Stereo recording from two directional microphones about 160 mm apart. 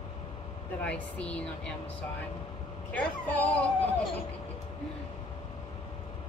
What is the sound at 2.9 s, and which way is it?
Speech, 10° left (ahead or behind).